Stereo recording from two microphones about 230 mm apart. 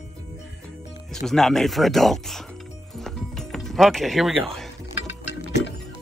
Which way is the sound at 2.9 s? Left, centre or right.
Centre.